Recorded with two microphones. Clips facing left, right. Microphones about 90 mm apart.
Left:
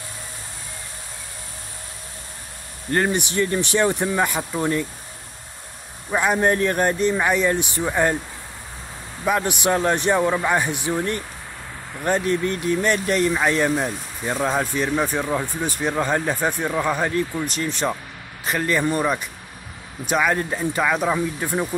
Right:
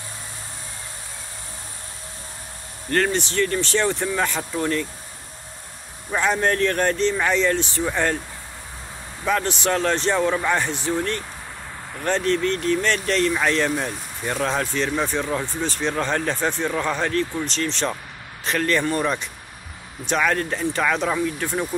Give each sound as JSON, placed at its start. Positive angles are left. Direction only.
{"t": 2.9, "sound": "speech", "side_deg": 15}
{"t": 6.1, "sound": "speech", "side_deg": 10}
{"t": 9.2, "sound": "speech", "side_deg": 10}